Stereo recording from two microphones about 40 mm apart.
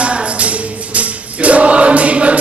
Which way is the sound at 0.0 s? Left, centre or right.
Right.